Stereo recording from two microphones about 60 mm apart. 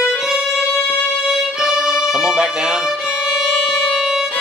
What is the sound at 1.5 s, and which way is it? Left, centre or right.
Music, centre.